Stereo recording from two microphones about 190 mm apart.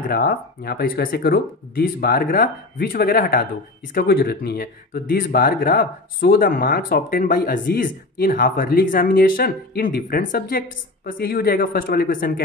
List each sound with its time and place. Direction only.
0.0 s speech: 50° left (ahead or behind)